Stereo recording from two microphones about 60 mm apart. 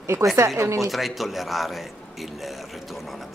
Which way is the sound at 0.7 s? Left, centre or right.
Centre.